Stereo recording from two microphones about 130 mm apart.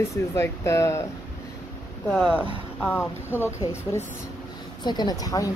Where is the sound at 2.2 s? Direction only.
5° right (ahead or behind).